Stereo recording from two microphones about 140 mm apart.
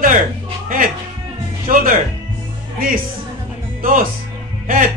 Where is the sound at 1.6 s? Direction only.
90° right.